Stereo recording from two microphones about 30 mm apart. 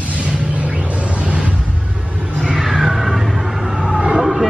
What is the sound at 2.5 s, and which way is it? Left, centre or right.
Music, centre.